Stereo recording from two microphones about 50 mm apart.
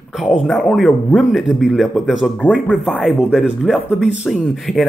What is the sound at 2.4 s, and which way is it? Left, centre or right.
Speech, left.